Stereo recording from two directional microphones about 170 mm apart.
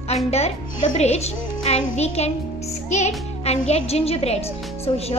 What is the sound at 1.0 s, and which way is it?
A child's voice, 40° left (ahead or behind).